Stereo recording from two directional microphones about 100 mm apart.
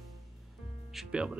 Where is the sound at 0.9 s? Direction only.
10° right (ahead or behind).